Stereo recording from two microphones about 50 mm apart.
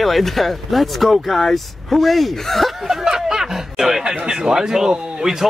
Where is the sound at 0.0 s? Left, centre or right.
Centre.